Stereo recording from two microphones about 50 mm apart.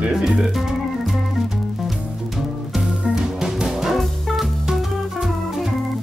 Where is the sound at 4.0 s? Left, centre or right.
Centre.